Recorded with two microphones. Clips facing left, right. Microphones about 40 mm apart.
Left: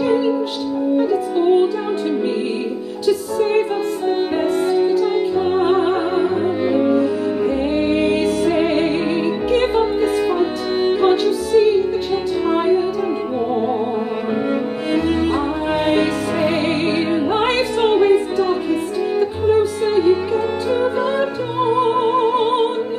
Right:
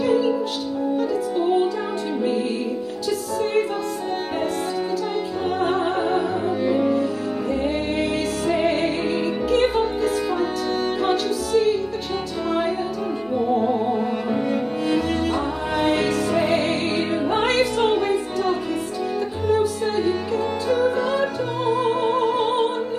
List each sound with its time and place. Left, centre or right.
0.0 s music: left
5.6 s music: left
14.5 s music: left